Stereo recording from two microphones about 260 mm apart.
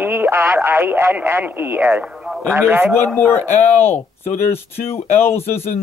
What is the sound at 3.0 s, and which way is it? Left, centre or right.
Speech, centre.